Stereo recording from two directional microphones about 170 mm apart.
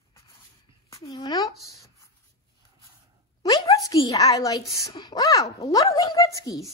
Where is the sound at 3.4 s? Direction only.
20° left (ahead or behind).